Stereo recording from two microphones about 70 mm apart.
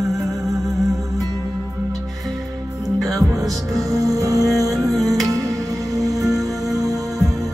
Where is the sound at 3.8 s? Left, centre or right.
Right.